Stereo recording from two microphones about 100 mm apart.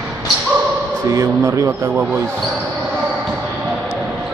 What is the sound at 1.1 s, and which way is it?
Speech, 30° right (ahead or behind).